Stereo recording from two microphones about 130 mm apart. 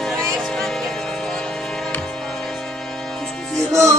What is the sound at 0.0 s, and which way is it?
Music, 5° left (ahead or behind).